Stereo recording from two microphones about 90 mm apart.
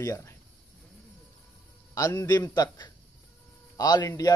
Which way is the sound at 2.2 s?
45° left (ahead or behind).